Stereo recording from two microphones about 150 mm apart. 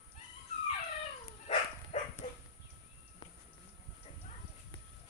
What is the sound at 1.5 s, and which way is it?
Dog, 50° left (ahead or behind).